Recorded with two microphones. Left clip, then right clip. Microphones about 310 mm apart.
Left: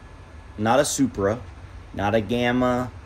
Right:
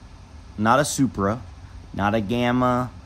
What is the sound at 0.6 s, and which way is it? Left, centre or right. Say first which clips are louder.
Speech: right 1 dB; right.